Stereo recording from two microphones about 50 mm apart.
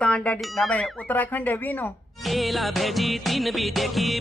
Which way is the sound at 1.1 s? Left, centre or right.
Left.